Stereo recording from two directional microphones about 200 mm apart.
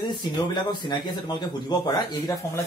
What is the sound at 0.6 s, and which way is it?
A man's voice, 20° left (ahead or behind).